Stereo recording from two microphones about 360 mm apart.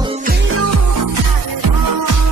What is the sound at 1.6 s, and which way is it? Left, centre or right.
Music, right.